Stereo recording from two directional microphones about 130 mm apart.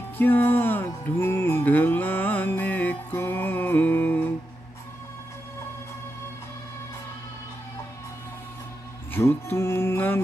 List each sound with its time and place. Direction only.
0.2 s music: 15° left (ahead or behind)
9.1 s music: 15° left (ahead or behind)